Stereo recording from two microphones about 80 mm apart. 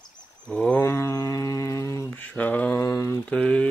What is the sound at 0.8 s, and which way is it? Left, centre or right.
Mantra, left.